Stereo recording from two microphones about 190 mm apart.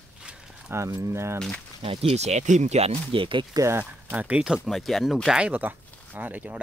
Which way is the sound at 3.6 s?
10° right (ahead or behind).